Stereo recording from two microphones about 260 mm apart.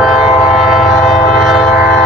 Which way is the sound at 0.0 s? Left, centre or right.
Centre.